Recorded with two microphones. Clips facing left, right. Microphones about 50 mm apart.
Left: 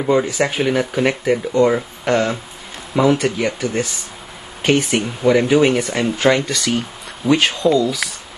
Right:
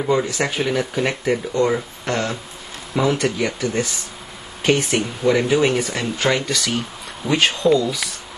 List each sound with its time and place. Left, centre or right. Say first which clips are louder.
0.0 s speech: left 3 dB; centre
1.5 s speech: left 4 dB; centre